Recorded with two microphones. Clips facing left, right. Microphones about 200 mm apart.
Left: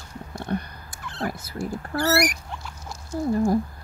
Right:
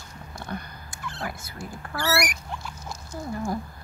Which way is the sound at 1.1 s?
35° left (ahead or behind).